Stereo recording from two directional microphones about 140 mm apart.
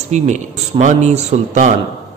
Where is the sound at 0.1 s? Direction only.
55° right (ahead or behind).